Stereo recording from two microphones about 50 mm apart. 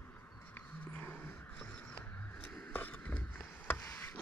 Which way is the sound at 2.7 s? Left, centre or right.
Left.